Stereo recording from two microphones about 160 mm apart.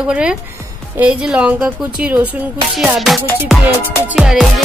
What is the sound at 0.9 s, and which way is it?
Speech, 10° right (ahead or behind).